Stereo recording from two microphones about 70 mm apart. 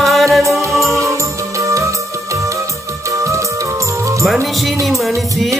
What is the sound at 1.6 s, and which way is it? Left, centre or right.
Music, right.